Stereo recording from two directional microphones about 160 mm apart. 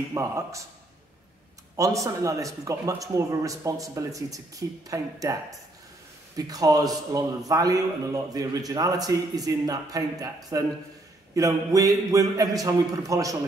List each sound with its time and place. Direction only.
0.1 s a man's voice: 20° right (ahead or behind)
1.8 s a man's voice: 20° right (ahead or behind)